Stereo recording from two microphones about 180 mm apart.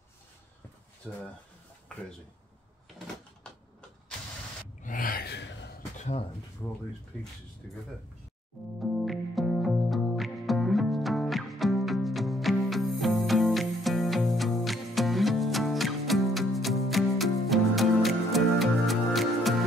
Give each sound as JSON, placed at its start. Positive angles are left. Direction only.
{"t": 1.0, "sound": "speech", "side_deg": 5}
{"t": 4.8, "sound": "gasp", "side_deg": 50}
{"t": 6.6, "sound": "speech", "side_deg": 5}
{"t": 8.6, "sound": "speech", "side_deg": 0}
{"t": 8.9, "sound": "music", "side_deg": 0}